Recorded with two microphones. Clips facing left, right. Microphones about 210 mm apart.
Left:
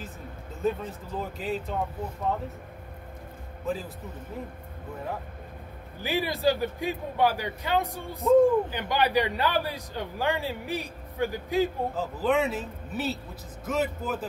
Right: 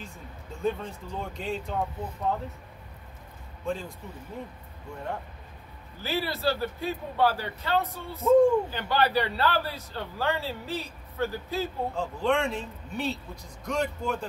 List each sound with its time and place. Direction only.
0.6 s speech: centre (ahead or behind)
3.7 s speech: 5° left (ahead or behind)
6.0 s a man's voice: 15° left (ahead or behind)
8.2 s speech: centre (ahead or behind)
8.6 s a man's voice: 15° left (ahead or behind)
11.9 s speech: 5° left (ahead or behind)